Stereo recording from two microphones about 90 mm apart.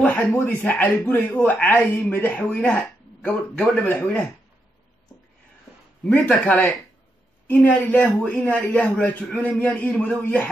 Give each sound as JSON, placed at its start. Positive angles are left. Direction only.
{"t": 0.0, "sound": "a man's voice", "side_deg": 20}
{"t": 6.0, "sound": "a man's voice", "side_deg": 15}